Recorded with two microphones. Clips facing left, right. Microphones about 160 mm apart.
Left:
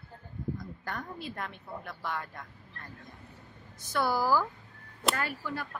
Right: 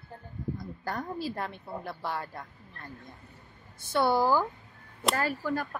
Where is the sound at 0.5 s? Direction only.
35° right (ahead or behind).